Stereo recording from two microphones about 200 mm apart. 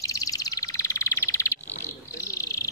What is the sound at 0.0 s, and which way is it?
Bird, 15° left (ahead or behind).